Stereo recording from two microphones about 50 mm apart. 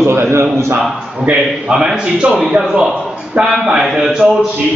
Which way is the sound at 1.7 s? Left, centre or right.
Centre.